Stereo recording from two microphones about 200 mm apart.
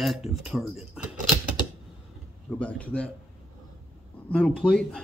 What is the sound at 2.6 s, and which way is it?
Speech, 5° left (ahead or behind).